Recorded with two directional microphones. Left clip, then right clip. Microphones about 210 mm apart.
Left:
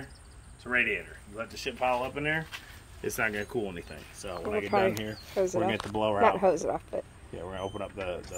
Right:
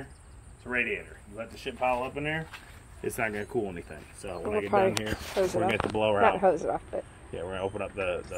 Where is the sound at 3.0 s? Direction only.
20° right (ahead or behind).